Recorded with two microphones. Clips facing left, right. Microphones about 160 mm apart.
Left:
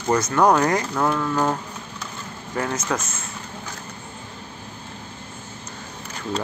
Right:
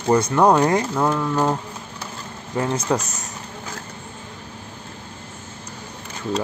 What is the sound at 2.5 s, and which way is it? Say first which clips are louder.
Speech: right 3 dB; 20° right (ahead or behind).